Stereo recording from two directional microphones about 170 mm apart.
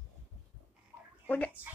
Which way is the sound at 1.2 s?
10° left (ahead or behind).